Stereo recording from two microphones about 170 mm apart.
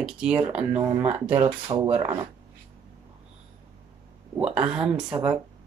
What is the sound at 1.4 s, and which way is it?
Speech, 35° right (ahead or behind).